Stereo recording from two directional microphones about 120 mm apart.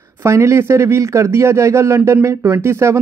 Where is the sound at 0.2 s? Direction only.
25° right (ahead or behind).